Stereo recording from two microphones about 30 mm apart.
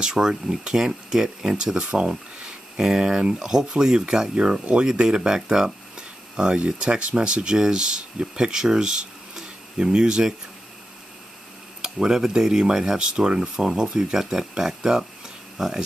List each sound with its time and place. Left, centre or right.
0.0 s speech: right
1.8 s speech: right
2.0 s speech: right
11.8 s tick-tock: right
12.4 s speech: centre
13.1 s speech: right
13.6 s speech: right
14.6 s a sound: centre